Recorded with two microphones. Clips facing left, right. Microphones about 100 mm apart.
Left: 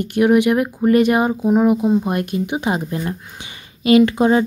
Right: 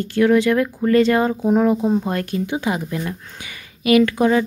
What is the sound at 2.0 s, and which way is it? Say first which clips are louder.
Speech: left 2 dB; 20° left (ahead or behind).